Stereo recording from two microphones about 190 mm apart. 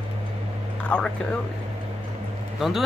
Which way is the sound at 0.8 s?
5° left (ahead or behind).